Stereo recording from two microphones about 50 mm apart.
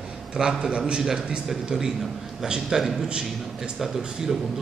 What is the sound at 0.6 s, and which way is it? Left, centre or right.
A man's voice, centre.